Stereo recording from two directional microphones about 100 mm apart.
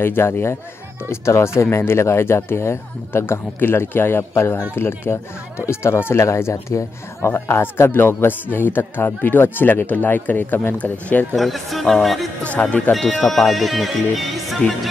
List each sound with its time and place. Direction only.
0.0 s speech: 20° left (ahead or behind)
11.3 s speech: centre (ahead or behind)
12.4 s speech: 15° left (ahead or behind)
13.3 s speech: centre (ahead or behind)